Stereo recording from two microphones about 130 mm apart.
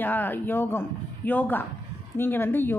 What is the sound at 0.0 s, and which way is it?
A woman's voice, 15° left (ahead or behind).